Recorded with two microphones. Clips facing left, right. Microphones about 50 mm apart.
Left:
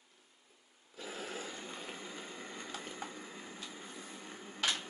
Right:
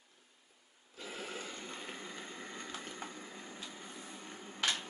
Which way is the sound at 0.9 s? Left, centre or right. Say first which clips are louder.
Left 1 dB; centre.